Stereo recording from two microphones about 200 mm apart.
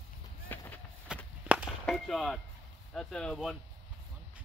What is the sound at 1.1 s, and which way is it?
Walk, 5° right (ahead or behind).